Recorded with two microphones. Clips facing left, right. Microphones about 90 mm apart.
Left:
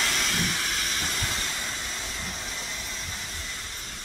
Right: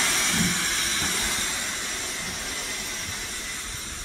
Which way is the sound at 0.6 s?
30° right (ahead or behind).